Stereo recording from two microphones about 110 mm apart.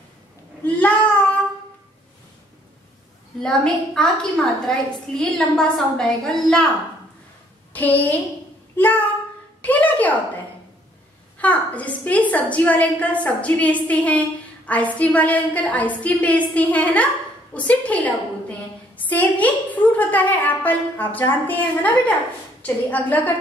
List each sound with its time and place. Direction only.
0.7 s child singing: 15° left (ahead or behind)
3.3 s a woman's voice: 5° left (ahead or behind)
7.7 s a woman's voice: 15° left (ahead or behind)
9.6 s a sound: 15° left (ahead or behind)
11.3 s a woman's voice: 15° left (ahead or behind)